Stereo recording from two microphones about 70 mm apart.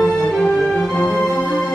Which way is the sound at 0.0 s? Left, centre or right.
Centre.